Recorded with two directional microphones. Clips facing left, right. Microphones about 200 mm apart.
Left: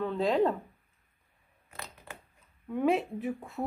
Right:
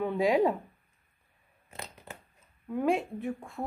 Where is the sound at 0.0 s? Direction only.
10° right (ahead or behind).